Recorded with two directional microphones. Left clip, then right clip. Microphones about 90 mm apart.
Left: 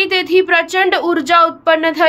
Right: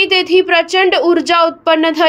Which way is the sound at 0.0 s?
25° right (ahead or behind).